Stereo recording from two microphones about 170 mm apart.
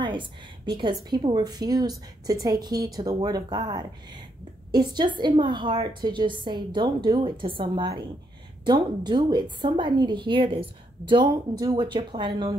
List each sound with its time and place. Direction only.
0.0 s a woman's voice: 30° right (ahead or behind)